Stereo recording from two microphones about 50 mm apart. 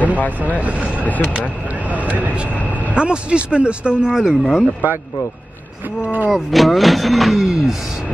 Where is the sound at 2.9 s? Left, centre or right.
Right.